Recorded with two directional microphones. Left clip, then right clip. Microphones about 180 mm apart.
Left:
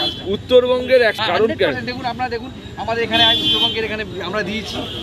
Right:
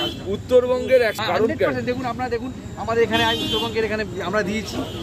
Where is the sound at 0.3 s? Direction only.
30° left (ahead or behind).